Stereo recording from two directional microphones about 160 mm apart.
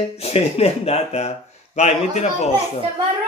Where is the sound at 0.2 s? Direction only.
40° left (ahead or behind).